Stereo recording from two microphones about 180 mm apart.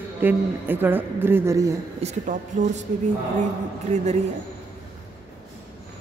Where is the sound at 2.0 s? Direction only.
45° right (ahead or behind).